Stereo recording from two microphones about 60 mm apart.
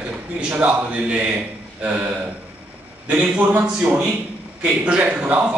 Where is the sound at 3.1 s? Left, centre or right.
Right.